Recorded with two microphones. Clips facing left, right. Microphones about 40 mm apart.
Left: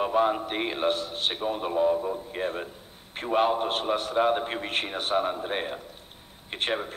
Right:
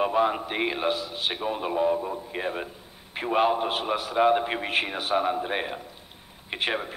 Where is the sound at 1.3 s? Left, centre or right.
Right.